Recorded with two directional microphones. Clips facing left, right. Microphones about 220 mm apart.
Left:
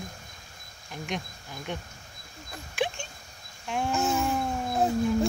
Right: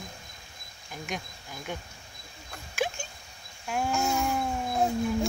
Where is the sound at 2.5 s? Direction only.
Centre (ahead or behind).